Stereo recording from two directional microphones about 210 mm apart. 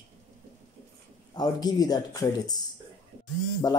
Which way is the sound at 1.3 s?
20° left (ahead or behind).